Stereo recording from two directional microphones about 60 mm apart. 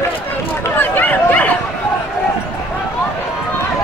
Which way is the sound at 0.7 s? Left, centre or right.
Left.